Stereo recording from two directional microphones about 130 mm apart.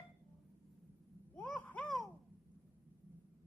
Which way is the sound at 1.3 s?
15° left (ahead or behind).